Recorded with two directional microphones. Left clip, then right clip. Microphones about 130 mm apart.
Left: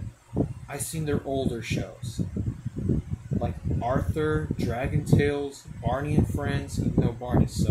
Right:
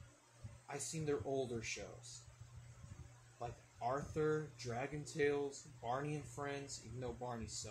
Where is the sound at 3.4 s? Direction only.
5° left (ahead or behind).